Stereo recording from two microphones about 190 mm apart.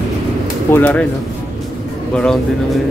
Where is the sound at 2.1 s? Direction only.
5° left (ahead or behind).